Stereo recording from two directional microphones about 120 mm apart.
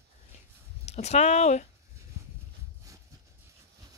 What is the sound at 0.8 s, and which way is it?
Speech, 65° left (ahead or behind).